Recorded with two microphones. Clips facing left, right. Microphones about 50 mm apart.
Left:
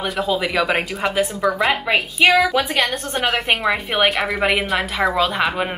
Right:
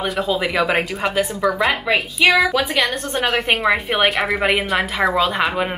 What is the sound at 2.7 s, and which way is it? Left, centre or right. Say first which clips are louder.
Speech: right 1 dB; left.